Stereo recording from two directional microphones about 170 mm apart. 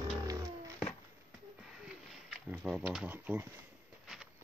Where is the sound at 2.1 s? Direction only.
5° right (ahead or behind).